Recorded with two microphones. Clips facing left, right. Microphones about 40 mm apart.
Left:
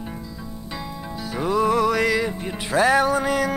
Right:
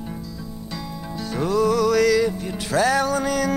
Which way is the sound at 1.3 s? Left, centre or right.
Centre.